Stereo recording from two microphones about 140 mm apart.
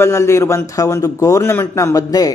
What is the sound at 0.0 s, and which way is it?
A man's voice, 20° left (ahead or behind).